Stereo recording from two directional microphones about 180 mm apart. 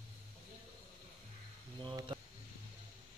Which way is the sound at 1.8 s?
20° right (ahead or behind).